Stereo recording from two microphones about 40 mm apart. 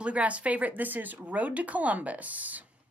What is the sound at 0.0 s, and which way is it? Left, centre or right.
A woman's voice, right.